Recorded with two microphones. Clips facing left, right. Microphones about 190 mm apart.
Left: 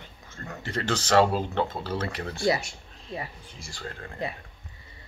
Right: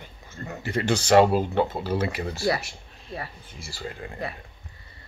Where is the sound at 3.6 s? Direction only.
5° right (ahead or behind).